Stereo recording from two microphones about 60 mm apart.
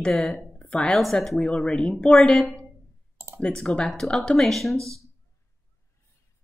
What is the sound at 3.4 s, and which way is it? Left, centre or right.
Speech, centre.